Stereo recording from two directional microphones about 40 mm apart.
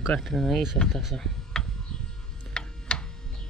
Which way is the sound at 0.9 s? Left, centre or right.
Centre.